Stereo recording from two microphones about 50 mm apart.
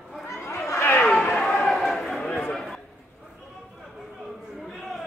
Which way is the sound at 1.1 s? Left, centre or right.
Centre.